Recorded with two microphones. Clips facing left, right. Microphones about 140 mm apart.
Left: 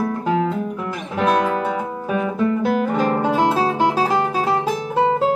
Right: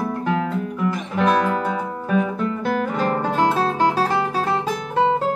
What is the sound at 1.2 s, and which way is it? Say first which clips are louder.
Guitar: left 1 dB; 5° left (ahead or behind).